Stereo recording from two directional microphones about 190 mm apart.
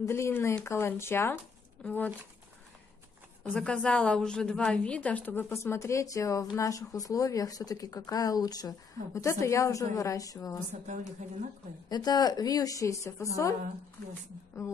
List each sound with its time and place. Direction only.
0.0 s speech: 15° left (ahead or behind)
3.5 s speech: 5° left (ahead or behind)
10.9 s a woman's voice: 40° right (ahead or behind)
11.9 s a woman's voice: 20° left (ahead or behind)